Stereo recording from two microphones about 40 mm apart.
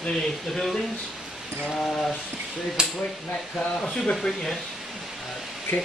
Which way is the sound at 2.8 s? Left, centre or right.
Right.